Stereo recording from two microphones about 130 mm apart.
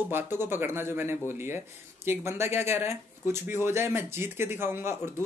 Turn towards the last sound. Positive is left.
turn(degrees=-20)  # may be behind; listen again after turning